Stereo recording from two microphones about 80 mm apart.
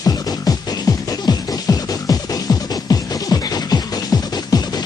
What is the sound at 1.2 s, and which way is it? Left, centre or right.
Music, left.